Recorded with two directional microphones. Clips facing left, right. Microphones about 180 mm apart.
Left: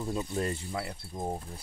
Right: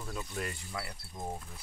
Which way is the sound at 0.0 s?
25° left (ahead or behind).